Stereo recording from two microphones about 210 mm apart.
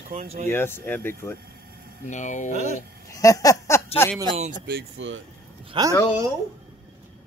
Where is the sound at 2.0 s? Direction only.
35° left (ahead or behind).